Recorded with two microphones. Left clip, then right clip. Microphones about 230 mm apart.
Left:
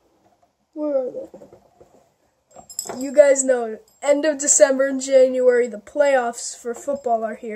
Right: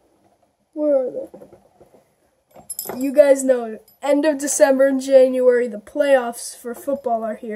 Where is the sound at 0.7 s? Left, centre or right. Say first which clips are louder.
Right 4 dB; centre.